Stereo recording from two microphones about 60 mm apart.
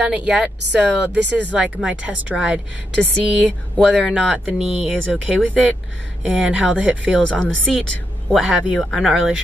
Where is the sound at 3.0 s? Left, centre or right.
Centre.